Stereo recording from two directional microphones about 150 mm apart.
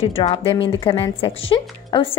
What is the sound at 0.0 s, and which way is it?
A woman's voice, 45° left (ahead or behind).